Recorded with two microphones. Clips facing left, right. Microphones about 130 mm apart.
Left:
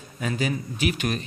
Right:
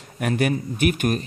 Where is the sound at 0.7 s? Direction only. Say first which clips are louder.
Right 5 dB; 50° right (ahead or behind).